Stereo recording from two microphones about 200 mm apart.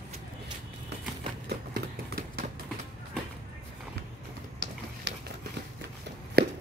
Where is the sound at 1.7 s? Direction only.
45° right (ahead or behind).